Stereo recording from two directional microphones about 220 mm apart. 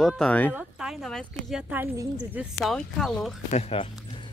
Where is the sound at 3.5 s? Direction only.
25° left (ahead or behind).